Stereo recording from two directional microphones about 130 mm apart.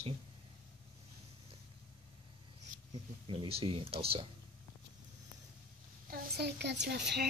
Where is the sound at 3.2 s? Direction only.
45° right (ahead or behind).